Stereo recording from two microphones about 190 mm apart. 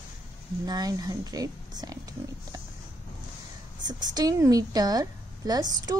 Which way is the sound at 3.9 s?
20° right (ahead or behind).